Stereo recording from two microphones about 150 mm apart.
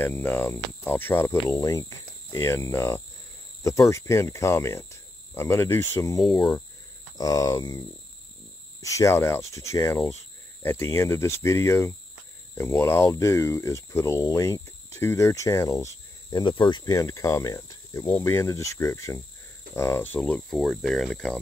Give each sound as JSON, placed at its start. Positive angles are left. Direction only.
{"t": 0.0, "sound": "speech", "side_deg": 15}
{"t": 8.8, "sound": "speech", "side_deg": 20}